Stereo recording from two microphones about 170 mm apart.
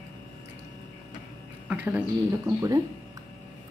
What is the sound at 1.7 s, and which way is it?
Speech, 10° right (ahead or behind).